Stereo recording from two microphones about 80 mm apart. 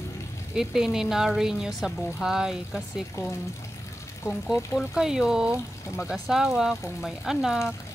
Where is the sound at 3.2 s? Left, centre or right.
Left.